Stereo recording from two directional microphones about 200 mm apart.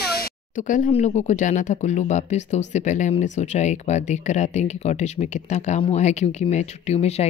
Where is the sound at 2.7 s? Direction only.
35° left (ahead or behind).